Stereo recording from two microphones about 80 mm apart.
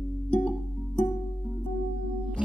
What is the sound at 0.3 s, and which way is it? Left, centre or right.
Music, centre.